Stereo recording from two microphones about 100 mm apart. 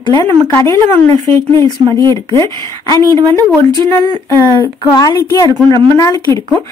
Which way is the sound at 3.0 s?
40° right (ahead or behind).